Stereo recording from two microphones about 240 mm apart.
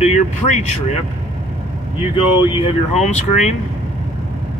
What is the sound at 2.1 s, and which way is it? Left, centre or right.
Speech, left.